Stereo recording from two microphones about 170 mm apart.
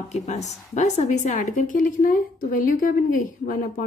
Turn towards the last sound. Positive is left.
turn(degrees=55)  # may be behind; listen again after turning